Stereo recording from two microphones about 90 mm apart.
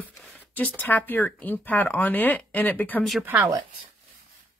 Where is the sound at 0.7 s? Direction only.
20° left (ahead or behind).